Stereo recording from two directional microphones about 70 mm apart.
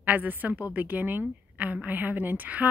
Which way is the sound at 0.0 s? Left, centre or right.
Right.